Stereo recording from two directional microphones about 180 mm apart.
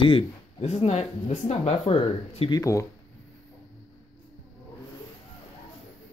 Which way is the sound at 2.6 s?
15° left (ahead or behind).